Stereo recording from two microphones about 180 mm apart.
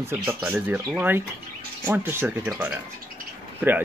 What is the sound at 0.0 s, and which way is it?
Speech, 15° right (ahead or behind).